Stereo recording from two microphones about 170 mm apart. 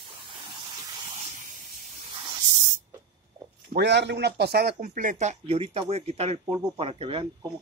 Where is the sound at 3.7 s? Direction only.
90° right; by 7.5 s 30° right (ahead or behind).